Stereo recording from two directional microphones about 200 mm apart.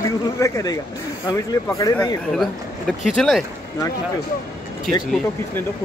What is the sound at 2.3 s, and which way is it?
Speech, centre (ahead or behind).